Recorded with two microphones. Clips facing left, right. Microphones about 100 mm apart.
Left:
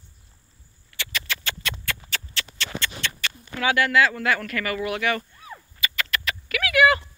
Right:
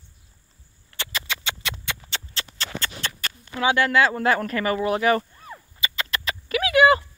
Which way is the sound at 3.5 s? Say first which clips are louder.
Right 1 dB; 30° right (ahead or behind).